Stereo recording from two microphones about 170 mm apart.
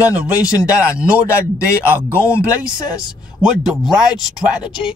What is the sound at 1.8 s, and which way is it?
Speech, 15° left (ahead or behind).